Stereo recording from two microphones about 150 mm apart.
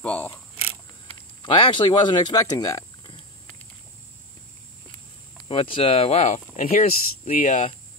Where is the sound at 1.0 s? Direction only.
30° left (ahead or behind).